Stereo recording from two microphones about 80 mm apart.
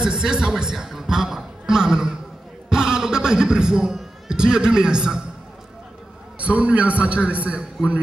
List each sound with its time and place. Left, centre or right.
0.0 s a man's voice: centre
6.3 s a man's voice: centre